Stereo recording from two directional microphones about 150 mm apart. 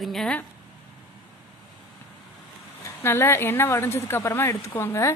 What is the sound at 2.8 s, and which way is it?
Speech, 15° left (ahead or behind).